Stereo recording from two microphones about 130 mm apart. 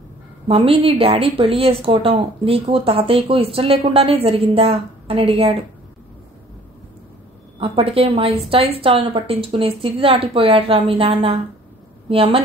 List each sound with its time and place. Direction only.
0.5 s speech: 45° right (ahead or behind)
7.5 s speech: 45° right (ahead or behind)